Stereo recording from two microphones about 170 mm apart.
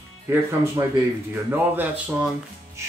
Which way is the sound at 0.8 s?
20° right (ahead or behind).